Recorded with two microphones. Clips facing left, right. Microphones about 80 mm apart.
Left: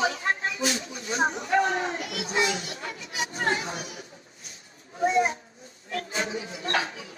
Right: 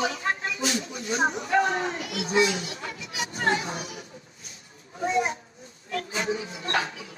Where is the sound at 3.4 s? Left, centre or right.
Right.